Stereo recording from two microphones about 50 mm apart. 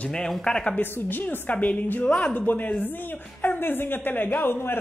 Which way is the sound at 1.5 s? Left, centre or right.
Left.